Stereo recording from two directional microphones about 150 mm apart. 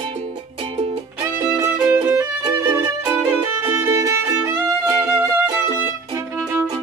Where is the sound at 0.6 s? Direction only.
40° right (ahead or behind).